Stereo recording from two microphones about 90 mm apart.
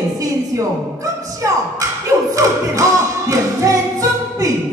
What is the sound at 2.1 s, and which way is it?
Music, 35° right (ahead or behind).